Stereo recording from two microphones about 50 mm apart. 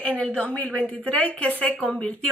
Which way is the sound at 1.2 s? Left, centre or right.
Left.